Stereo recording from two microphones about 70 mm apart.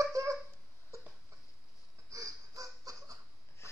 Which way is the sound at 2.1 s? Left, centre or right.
Right.